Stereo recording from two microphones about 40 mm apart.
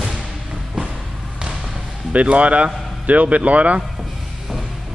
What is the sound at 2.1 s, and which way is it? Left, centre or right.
A man's voice, right.